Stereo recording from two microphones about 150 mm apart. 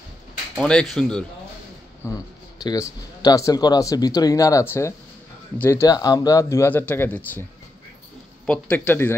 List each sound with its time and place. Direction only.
0.6 s speech: 5° left (ahead or behind)
2.0 s speech: 25° left (ahead or behind)
8.5 s speech: 10° left (ahead or behind)